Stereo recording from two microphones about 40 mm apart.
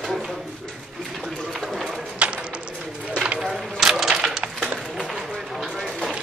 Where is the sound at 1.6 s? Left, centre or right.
Centre.